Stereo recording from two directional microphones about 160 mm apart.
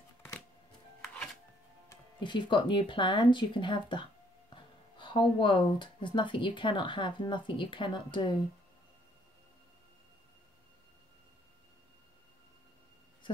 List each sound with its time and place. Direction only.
2.1 s speech: 30° left (ahead or behind)